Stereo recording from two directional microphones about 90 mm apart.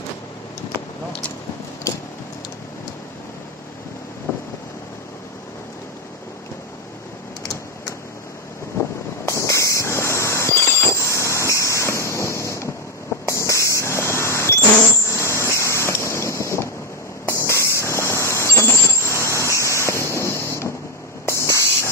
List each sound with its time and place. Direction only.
1.9 s vehicle: 35° left (ahead or behind)
9.2 s a sound: 35° left (ahead or behind)
15.0 s vehicle: 30° left (ahead or behind)
21.3 s spray: 30° left (ahead or behind)